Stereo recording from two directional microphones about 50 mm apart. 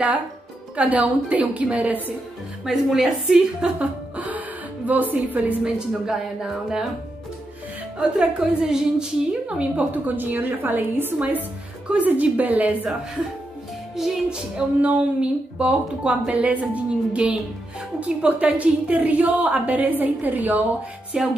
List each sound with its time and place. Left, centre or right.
0.7 s a woman's voice: right
2.6 s a woman's voice: centre
4.8 s a woman's voice: right
5.6 s a woman's voice: centre
8.2 s a woman's voice: centre
9.8 s a woman's voice: right
14.0 s a woman's voice: centre
14.3 s a woman's voice: right
21.1 s a woman's voice: centre